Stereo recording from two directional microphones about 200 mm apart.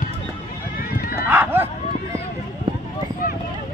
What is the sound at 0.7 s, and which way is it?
Run, 50° left (ahead or behind).